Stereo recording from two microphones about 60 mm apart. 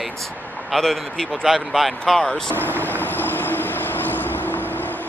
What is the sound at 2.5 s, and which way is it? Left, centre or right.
Vehicle, left.